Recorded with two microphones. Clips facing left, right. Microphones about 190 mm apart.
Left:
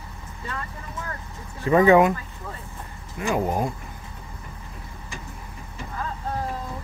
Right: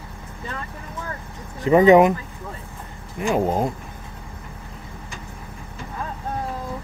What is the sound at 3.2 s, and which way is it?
Speech, 20° right (ahead or behind).